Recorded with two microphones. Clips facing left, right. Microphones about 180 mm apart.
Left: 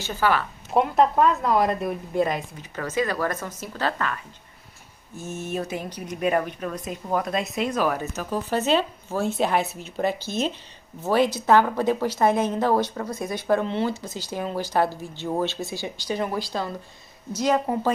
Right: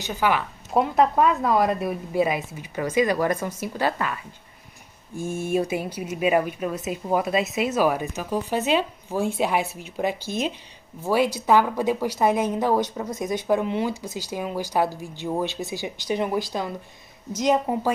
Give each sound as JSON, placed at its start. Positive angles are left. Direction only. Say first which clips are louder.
{"t": 0.0, "sound": "speech", "louder": "even", "side_deg": -15}
{"t": 0.7, "sound": "speech", "louder": "even", "side_deg": 0}